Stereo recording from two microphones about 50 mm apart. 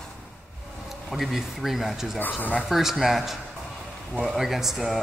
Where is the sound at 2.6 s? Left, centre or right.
Centre.